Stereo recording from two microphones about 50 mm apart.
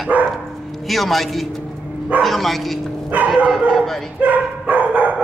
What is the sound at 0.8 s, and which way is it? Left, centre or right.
A man's voice, centre.